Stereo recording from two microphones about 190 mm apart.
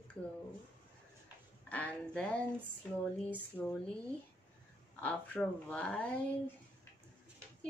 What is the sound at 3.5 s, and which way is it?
Speech, 5° left (ahead or behind).